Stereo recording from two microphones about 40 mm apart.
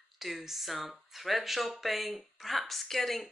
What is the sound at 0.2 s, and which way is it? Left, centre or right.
Speech, centre.